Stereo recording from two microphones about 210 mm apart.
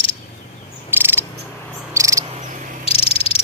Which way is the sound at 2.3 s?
35° right (ahead or behind).